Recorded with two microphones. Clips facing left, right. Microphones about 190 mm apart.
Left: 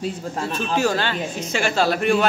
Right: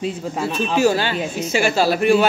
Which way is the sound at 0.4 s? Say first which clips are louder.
Right 4 dB; 10° right (ahead or behind).